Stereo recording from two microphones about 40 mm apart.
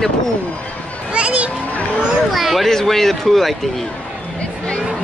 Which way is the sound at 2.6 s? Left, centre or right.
Centre.